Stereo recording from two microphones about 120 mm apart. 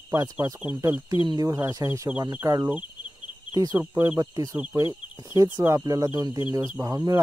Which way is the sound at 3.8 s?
20° right (ahead or behind).